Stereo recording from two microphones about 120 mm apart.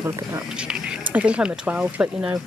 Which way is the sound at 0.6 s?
10° right (ahead or behind).